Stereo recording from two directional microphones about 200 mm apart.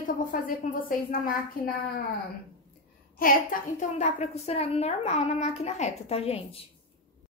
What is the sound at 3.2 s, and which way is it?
Speech, 45° left (ahead or behind).